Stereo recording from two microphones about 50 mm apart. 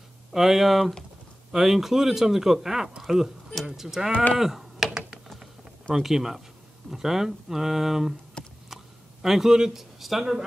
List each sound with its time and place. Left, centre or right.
0.3 s a man's voice: centre
5.9 s a man's voice: centre
8.4 s a sound: centre
9.2 s a man's voice: centre